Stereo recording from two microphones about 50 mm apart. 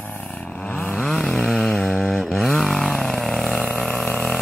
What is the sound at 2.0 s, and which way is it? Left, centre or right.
Vehicle, centre.